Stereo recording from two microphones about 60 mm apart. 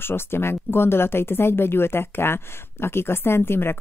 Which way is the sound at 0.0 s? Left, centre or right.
Left.